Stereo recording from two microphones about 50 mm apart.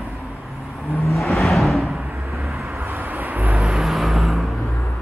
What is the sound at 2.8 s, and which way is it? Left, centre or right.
Vehicle, right.